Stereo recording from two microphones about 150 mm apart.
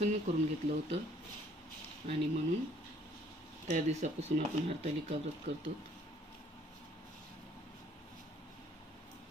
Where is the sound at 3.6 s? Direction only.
50° right (ahead or behind).